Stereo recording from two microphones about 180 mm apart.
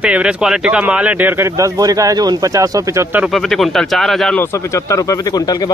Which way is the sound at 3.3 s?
Centre (ahead or behind).